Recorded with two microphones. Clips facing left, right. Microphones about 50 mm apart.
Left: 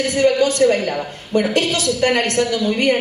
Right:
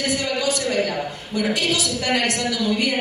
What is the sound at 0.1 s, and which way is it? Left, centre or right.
A woman's voice, left.